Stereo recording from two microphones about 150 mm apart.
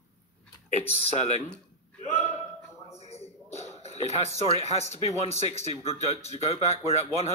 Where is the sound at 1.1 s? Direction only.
50° left (ahead or behind).